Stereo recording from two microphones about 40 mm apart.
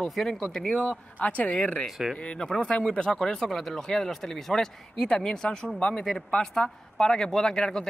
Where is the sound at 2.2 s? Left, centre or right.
Left.